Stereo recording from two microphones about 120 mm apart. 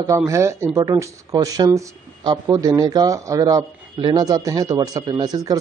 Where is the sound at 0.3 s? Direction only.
25° right (ahead or behind).